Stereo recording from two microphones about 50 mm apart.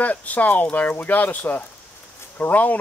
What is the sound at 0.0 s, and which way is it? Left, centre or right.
Speech, left.